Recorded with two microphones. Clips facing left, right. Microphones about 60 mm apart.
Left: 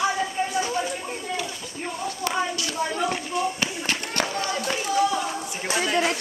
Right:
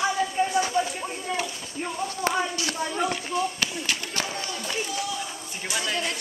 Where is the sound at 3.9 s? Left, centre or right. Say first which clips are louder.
Left 3 dB; left.